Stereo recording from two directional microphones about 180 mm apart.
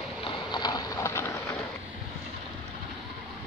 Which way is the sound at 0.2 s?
25° left (ahead or behind).